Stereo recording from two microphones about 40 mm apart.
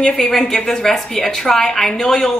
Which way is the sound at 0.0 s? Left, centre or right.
Centre.